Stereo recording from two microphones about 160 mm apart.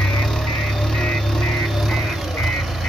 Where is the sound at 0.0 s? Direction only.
Centre (ahead or behind).